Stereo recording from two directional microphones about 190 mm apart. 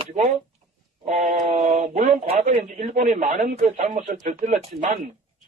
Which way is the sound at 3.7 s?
35° right (ahead or behind).